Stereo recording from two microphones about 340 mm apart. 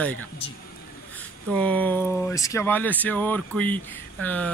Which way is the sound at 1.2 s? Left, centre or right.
Centre.